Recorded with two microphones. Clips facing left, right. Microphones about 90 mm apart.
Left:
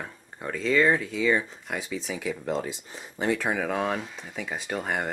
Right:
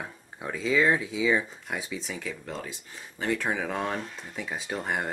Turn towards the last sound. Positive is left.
turn(degrees=0)  # may be behind; listen again after turning